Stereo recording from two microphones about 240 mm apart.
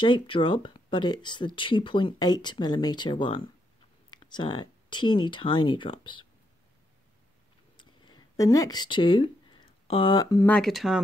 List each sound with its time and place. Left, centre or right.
0.0 s speech: left
7.7 s speech: centre